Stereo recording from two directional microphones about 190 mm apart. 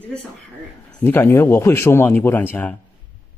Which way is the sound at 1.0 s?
10° left (ahead or behind).